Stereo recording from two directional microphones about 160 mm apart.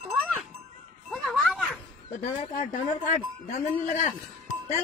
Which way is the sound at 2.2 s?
50° left (ahead or behind).